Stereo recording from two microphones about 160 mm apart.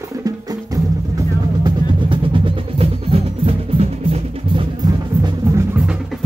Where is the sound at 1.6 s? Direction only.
30° right (ahead or behind).